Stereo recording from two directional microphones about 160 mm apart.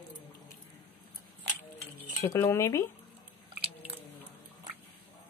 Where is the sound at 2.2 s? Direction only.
15° left (ahead or behind).